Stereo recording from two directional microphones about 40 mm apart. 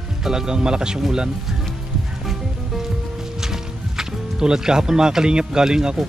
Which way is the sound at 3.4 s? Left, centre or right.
Centre.